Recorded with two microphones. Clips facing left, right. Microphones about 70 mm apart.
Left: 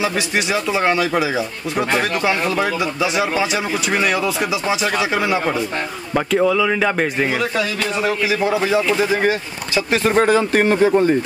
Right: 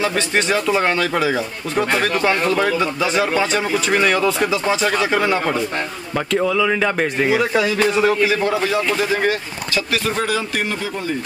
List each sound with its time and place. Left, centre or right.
0.0 s speech: centre
10.0 s a man's voice: left